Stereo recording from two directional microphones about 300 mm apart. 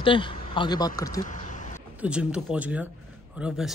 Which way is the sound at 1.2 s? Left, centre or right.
Left.